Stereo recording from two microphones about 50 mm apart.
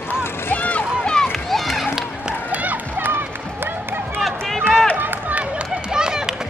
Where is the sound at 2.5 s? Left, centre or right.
Right.